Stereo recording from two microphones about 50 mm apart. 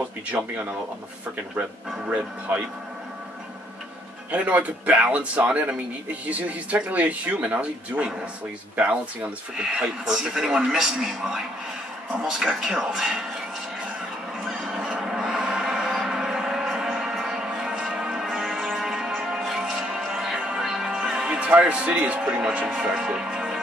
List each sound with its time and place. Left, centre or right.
4.3 s speech: right
9.6 s a man's voice: centre
14.5 s music: centre
21.3 s speech: right
22.9 s music: centre